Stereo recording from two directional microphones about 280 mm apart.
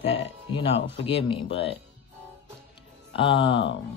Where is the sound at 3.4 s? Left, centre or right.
Left.